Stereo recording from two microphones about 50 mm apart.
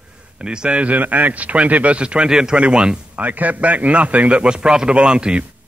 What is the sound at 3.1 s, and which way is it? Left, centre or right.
A man's voice, right.